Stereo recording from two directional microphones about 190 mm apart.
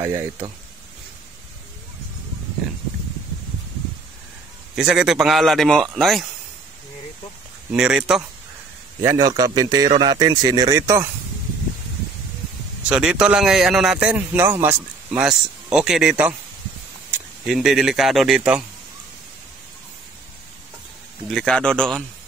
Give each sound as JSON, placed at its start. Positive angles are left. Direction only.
{"t": 0.0, "sound": "speech", "side_deg": -15}
{"t": 4.7, "sound": "a man's voice", "side_deg": -5}
{"t": 7.7, "sound": "a man's voice", "side_deg": -5}
{"t": 9.0, "sound": "a man's voice", "side_deg": -20}
{"t": 12.8, "sound": "a man's voice", "side_deg": -5}
{"t": 17.5, "sound": "a man's voice", "side_deg": 0}
{"t": 21.3, "sound": "a man's voice", "side_deg": 5}